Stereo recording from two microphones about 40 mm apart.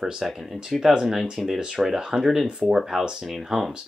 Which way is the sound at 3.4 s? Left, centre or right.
Centre.